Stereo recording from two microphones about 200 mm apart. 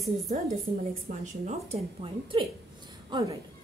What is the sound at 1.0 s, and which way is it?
A woman's voice, 35° right (ahead or behind).